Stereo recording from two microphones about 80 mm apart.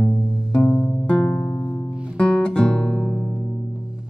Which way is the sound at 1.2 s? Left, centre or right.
Left.